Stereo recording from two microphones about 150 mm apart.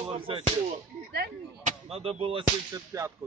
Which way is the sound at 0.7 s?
75° right (ahead or behind).